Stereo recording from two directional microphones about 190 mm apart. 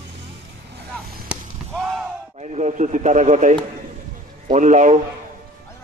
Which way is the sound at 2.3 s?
35° right (ahead or behind).